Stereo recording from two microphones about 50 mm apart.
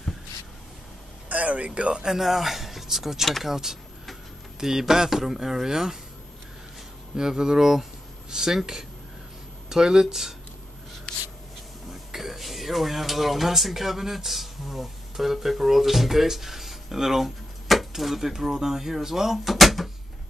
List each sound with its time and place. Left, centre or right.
1.3 s speech: right
2.0 s speech: centre
7.2 s speech: centre
11.9 s speech: centre